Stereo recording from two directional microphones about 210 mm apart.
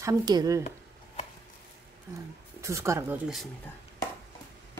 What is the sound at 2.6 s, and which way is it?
Speech, 15° right (ahead or behind).